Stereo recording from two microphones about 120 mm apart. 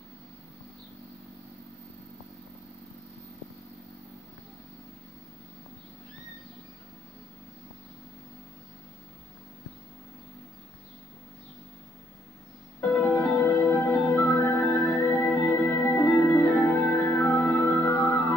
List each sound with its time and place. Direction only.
12.9 s music: 20° left (ahead or behind)